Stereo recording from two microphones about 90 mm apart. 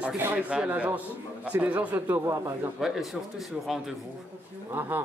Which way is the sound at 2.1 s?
35° right (ahead or behind).